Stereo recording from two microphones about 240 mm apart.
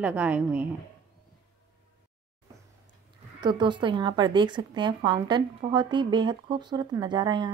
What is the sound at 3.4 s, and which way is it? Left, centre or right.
A woman's voice, centre.